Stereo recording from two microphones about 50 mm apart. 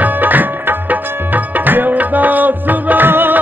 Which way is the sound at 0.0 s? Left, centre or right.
Right.